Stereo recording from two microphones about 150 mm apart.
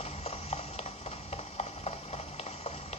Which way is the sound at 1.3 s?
45° left (ahead or behind).